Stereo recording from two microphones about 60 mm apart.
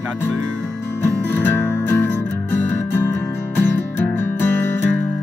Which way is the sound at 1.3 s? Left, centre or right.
Left.